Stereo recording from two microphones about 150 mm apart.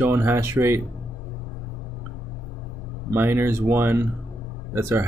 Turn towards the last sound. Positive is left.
turn(degrees=-15)  # may be behind; listen again after turning